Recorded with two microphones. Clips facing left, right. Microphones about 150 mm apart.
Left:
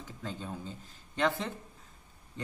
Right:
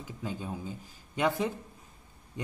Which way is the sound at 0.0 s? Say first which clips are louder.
Right 3 dB; 10° right (ahead or behind).